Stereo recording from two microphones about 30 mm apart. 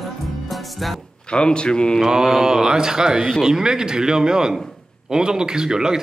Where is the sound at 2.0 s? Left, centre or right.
Centre.